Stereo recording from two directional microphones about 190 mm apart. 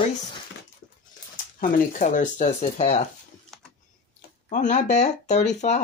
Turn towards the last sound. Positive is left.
turn(degrees=35)  # may be behind; listen again after turning